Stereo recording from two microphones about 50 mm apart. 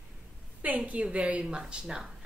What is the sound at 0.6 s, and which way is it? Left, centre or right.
A woman's voice, right.